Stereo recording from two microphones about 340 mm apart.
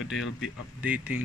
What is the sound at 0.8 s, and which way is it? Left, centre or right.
Speech, centre.